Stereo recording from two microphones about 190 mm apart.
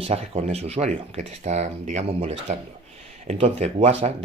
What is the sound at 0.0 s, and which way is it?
Speech, 35° right (ahead or behind).